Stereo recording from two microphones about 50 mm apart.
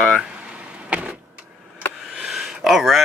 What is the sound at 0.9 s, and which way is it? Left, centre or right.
Power windows, right.